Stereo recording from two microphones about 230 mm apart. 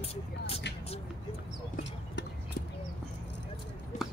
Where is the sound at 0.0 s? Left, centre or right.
Left.